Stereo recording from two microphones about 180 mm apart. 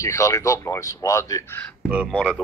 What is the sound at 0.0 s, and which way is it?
Speech, 15° left (ahead or behind).